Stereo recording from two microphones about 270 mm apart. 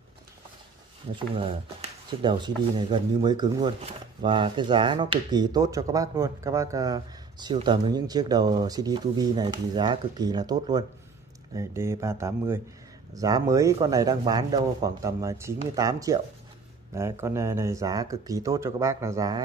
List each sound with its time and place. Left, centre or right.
1.3 s speech: right